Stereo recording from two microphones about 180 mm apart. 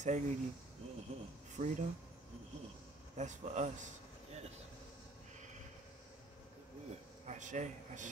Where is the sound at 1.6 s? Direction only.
45° right (ahead or behind).